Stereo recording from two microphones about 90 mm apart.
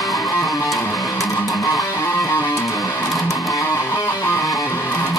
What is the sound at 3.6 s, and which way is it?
Music, 30° left (ahead or behind).